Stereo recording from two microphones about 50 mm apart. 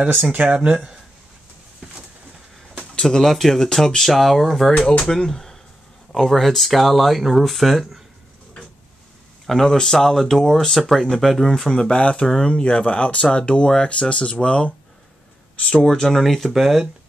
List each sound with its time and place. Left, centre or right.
0.3 s speech: right
3.0 s speech: centre
4.7 s speech: centre
9.5 s speech: centre